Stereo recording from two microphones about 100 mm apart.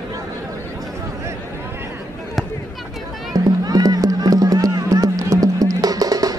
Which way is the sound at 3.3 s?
40° right (ahead or behind).